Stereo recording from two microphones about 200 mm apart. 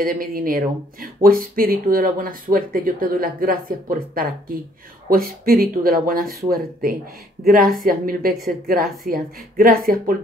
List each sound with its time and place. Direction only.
0.0 s speech: 45° right (ahead or behind)